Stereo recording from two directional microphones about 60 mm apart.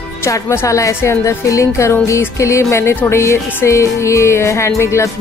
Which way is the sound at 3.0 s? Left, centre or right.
Left.